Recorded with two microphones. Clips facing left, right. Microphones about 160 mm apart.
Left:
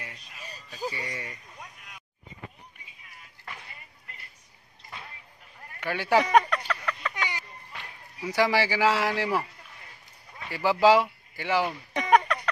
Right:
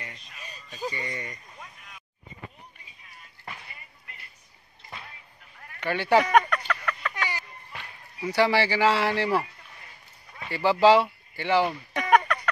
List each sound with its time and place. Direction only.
0.0 s a sound: 5° left (ahead or behind)
5.8 s speech: 5° left (ahead or behind)
6.3 s a sound: 25° left (ahead or behind)
8.4 s a man's voice: 10° left (ahead or behind)
10.5 s speech: 10° left (ahead or behind)
11.9 s fowl: 25° left (ahead or behind)